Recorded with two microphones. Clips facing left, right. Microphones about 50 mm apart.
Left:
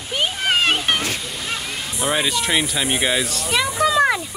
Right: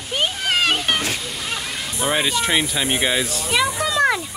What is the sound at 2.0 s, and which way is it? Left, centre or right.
Speech, centre.